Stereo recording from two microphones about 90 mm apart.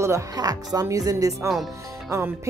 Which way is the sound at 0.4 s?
45° right (ahead or behind).